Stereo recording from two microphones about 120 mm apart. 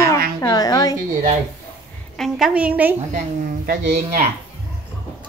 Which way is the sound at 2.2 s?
5° right (ahead or behind).